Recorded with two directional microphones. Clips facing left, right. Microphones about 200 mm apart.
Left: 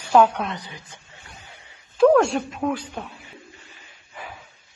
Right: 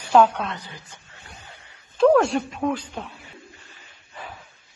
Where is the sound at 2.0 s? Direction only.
Centre (ahead or behind).